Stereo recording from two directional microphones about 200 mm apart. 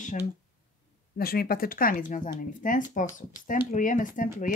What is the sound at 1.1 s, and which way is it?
Speech, 50° left (ahead or behind).